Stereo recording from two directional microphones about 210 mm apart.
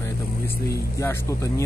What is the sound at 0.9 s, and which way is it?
Speech, 15° left (ahead or behind).